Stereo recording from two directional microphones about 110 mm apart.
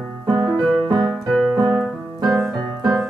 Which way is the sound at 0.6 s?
40° right (ahead or behind).